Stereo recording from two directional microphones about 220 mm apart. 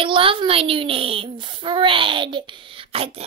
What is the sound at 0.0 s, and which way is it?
A woman's voice, 25° right (ahead or behind).